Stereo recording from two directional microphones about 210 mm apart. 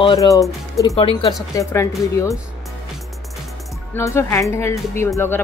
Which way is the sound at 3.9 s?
10° left (ahead or behind).